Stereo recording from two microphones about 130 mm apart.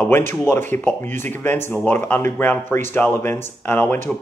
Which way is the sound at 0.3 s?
15° left (ahead or behind).